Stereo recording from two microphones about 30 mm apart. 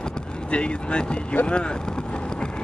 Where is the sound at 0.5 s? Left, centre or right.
Left.